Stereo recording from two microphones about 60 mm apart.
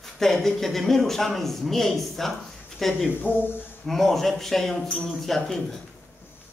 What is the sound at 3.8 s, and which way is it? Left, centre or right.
Speech, centre.